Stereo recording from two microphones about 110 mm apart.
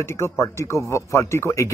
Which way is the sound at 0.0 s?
25° left (ahead or behind).